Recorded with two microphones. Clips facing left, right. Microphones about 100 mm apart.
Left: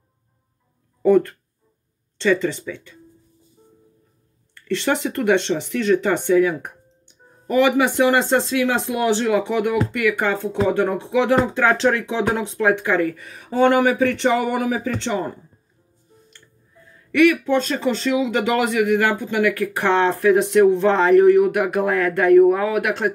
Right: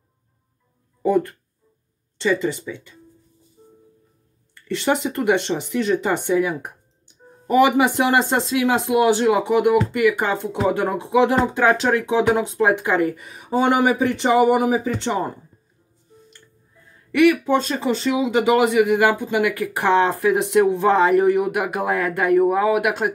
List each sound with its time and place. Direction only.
1.0 s speech: 10° right (ahead or behind)
4.6 s speech: 15° right (ahead or behind)
17.1 s speech: 15° right (ahead or behind)